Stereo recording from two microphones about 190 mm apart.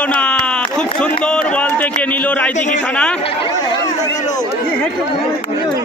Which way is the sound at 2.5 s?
40° left (ahead or behind).